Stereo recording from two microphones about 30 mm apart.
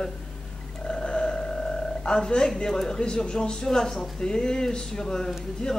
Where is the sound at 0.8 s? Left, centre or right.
Left.